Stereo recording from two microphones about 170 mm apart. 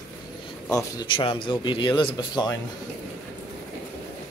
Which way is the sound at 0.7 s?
20° left (ahead or behind).